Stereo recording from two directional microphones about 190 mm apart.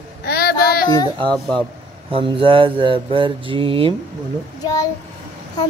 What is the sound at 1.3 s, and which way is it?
Speech, 5° left (ahead or behind).